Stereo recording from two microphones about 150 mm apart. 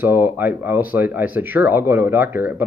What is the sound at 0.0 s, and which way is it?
Speech, 15° right (ahead or behind).